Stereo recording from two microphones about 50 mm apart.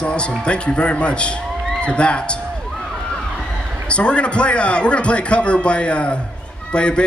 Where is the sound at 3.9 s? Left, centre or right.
Left.